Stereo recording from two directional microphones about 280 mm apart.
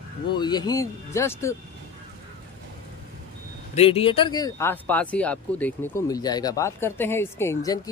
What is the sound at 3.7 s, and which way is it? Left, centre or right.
Speech, left.